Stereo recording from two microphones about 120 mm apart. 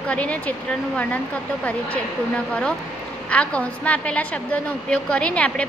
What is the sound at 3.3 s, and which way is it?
Speech, 10° left (ahead or behind).